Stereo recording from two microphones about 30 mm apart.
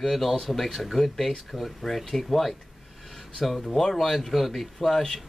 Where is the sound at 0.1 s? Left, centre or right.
Centre.